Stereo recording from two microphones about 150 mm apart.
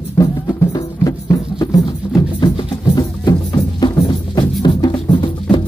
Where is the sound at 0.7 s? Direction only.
25° left (ahead or behind).